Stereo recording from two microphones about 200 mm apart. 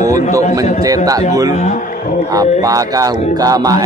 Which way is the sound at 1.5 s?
35° left (ahead or behind).